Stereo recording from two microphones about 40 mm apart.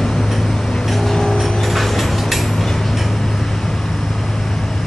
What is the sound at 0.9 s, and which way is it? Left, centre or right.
Vehicle, centre.